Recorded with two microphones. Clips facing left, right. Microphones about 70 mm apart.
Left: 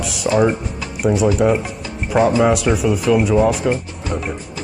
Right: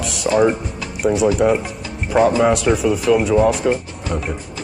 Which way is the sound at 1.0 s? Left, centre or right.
Centre.